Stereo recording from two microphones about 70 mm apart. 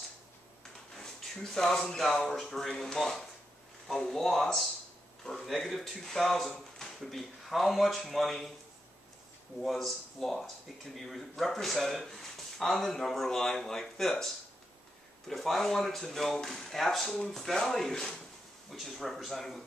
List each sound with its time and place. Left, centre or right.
0.9 s speech: centre
9.6 s speech: centre